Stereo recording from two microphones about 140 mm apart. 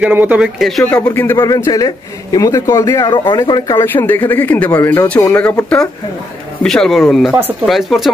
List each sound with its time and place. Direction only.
0.0 s speech: 10° right (ahead or behind)
0.6 s speech: centre (ahead or behind)
0.8 s speech: 10° left (ahead or behind)
1.4 s speech: 25° left (ahead or behind)
3.7 s speech: 15° left (ahead or behind)